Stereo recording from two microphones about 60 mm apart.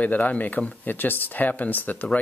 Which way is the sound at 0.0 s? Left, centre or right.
Left.